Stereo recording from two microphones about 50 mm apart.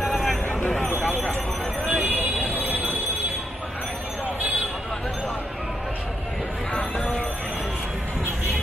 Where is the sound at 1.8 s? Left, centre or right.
Right.